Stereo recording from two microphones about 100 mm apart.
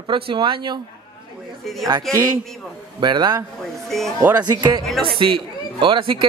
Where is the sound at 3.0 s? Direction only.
50° right (ahead or behind).